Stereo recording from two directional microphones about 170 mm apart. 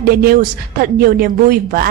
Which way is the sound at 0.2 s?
60° right (ahead or behind).